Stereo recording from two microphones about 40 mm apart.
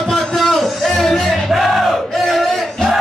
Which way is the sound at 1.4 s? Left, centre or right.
Centre.